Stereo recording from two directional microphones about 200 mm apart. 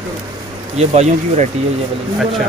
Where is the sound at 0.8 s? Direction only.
35° right (ahead or behind).